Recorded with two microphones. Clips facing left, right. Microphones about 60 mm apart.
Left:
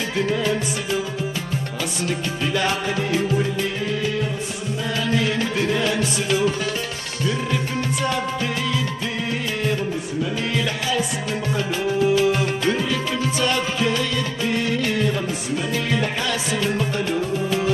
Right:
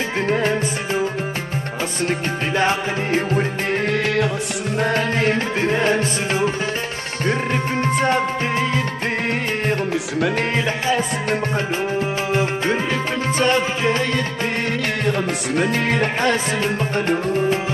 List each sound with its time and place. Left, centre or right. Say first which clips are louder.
0.1 s music: right 1 dB; right
4.7 s music: right 3 dB; right
10.5 s music: right 3 dB; right
15.0 s music: right 2 dB; right